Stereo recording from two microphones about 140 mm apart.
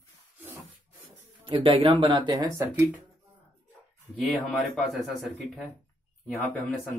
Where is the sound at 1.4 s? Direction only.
40° right (ahead or behind).